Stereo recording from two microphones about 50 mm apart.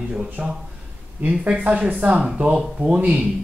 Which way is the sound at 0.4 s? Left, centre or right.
Centre.